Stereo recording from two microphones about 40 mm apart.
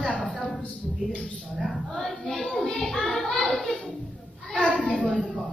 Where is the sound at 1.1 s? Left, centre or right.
Left.